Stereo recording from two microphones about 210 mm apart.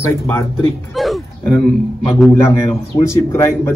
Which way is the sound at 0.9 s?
Centre (ahead or behind).